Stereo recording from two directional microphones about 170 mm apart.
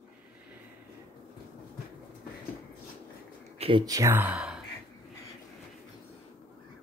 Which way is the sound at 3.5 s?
35° right (ahead or behind).